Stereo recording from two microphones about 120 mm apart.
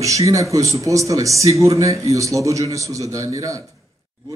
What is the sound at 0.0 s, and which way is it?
Speech, 25° right (ahead or behind).